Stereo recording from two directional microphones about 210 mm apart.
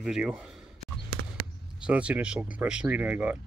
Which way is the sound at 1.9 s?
5° right (ahead or behind).